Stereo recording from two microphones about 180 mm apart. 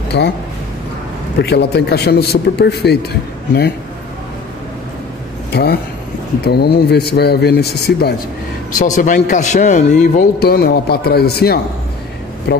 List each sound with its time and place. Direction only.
0.1 s speech: 70° left (ahead or behind)
1.4 s a man's voice: 65° left (ahead or behind)
5.5 s a man's voice: 60° left (ahead or behind)
8.7 s a man's voice: 45° left (ahead or behind)
10.1 s a man's voice: 60° left (ahead or behind)